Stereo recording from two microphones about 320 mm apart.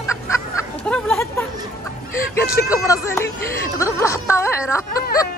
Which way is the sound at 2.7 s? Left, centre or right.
Centre.